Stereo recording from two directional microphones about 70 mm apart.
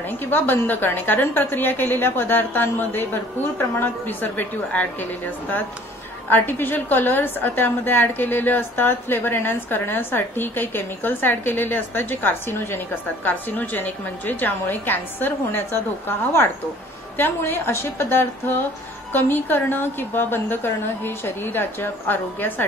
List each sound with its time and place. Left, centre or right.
0.2 s a woman's voice: left